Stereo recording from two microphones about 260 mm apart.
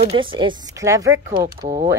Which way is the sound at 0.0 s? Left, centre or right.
Centre.